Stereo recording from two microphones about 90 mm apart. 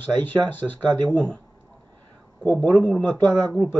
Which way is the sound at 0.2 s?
20° left (ahead or behind).